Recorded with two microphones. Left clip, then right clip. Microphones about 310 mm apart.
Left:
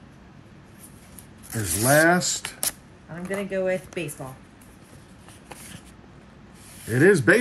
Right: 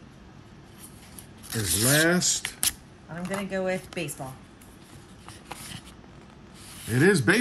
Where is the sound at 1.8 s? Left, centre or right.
Left.